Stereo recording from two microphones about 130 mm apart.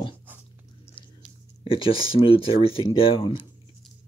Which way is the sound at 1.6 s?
40° left (ahead or behind).